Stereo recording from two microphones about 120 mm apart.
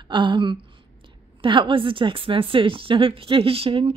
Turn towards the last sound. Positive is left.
turn(degrees=-50)  # may be behind; listen again after turning